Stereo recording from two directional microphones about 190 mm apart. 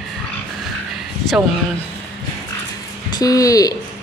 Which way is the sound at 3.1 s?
20° left (ahead or behind).